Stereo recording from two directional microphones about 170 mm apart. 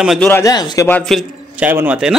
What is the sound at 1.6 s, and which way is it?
Speech, 10° right (ahead or behind).